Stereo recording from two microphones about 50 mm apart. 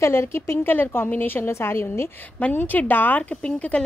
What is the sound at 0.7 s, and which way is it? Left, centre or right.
Speech, left.